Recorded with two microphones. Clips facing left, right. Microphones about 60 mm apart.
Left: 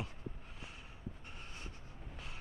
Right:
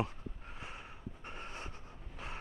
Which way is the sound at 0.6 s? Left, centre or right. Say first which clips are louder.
Right 5 dB; right.